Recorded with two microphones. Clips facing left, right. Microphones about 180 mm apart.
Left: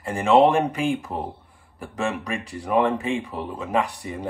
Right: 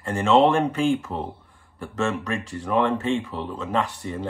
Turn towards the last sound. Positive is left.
turn(degrees=15)  # may be behind; listen again after turning